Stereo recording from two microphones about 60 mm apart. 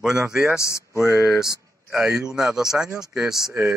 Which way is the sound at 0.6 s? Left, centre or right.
Left.